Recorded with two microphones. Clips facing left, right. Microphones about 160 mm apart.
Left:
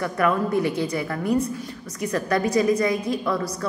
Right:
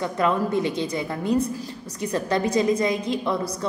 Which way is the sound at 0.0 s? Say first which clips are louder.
Left 1 dB; 20° right (ahead or behind).